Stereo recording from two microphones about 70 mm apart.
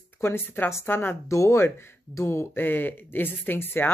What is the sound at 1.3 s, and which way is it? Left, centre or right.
Speech, left.